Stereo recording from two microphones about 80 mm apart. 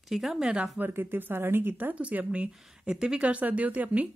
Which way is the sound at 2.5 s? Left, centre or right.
Centre.